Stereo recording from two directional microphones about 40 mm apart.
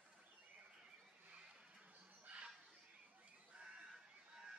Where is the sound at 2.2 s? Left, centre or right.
Right.